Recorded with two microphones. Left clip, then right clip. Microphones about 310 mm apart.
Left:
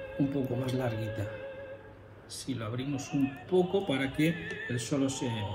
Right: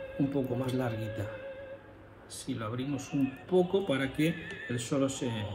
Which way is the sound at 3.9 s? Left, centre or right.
Centre.